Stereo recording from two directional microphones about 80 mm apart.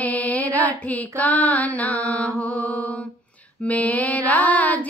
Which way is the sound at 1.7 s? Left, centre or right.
Centre.